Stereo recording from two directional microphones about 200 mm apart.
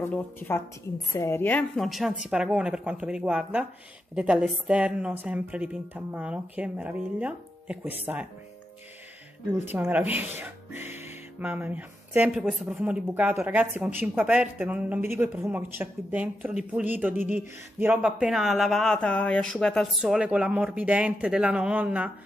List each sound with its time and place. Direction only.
0.0 s a woman's voice: 10° left (ahead or behind); by 8.3 s 10° right (ahead or behind)
9.7 s speech: 10° right (ahead or behind)